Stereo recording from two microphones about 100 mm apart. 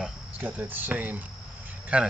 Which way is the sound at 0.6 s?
20° right (ahead or behind).